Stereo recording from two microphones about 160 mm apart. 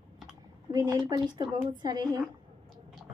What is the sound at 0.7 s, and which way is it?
A woman's voice, 25° right (ahead or behind).